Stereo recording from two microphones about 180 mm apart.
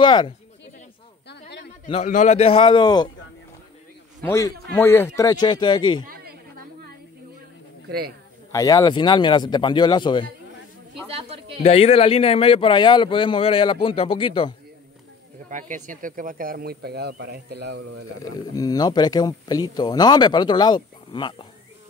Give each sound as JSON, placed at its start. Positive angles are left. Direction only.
{"t": 0.0, "sound": "speech", "side_deg": 25}
{"t": 1.9, "sound": "speech", "side_deg": 40}
{"t": 4.2, "sound": "speech", "side_deg": 15}
{"t": 8.5, "sound": "speech", "side_deg": 20}
{"t": 11.1, "sound": "a sound", "side_deg": -30}
{"t": 11.6, "sound": "speech", "side_deg": 35}
{"t": 15.5, "sound": "speech", "side_deg": -45}
{"t": 18.2, "sound": "speech", "side_deg": 20}